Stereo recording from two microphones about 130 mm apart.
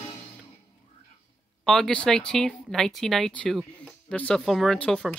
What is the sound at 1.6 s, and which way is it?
Speech, centre (ahead or behind).